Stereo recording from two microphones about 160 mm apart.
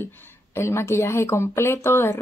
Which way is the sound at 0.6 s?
15° left (ahead or behind).